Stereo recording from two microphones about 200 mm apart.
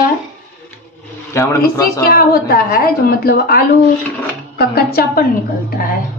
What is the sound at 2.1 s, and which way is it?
A woman's voice, 50° left (ahead or behind).